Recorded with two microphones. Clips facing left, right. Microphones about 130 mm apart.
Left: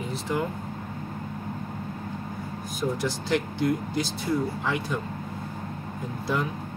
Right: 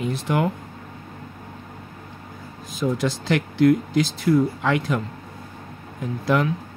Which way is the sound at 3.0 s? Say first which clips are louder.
Right 3 dB; 90° right.